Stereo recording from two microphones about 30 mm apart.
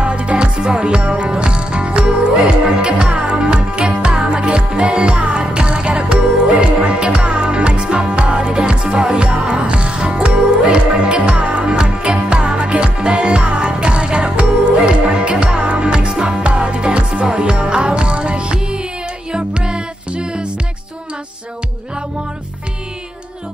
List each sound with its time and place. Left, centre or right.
0.0 s music: right